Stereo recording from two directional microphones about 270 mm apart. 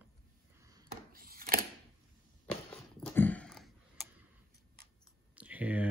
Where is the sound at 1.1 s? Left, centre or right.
Right.